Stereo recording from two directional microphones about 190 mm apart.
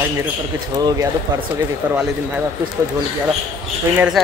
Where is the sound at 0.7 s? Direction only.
20° right (ahead or behind).